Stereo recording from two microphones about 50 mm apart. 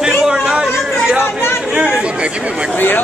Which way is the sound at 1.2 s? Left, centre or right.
Left.